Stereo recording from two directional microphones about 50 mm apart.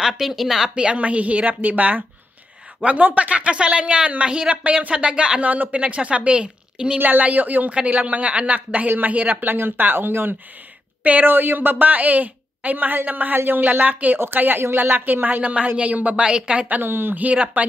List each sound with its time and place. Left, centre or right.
0.0 s speech: centre
0.7 s a woman's voice: right
5.4 s a woman's voice: right
7.0 s a woman's voice: right
15.4 s a woman's voice: right
16.8 s speech: right
17.2 s a woman's voice: right